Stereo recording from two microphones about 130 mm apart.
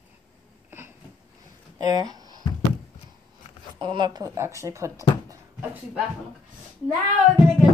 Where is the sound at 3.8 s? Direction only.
35° right (ahead or behind).